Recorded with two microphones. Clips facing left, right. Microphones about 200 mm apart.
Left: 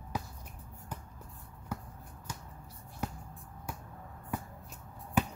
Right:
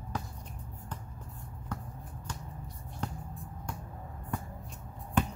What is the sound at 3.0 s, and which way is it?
Music, 5° left (ahead or behind).